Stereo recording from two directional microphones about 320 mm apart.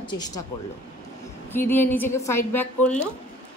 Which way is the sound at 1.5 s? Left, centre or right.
Centre.